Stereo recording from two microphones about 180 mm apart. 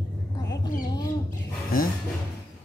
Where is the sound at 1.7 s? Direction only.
55° left (ahead or behind).